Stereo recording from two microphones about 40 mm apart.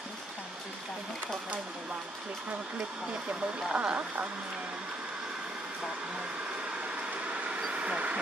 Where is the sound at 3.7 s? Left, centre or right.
Right.